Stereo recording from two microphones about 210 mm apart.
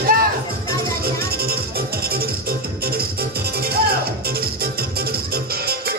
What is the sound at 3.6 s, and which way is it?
Music, 45° right (ahead or behind).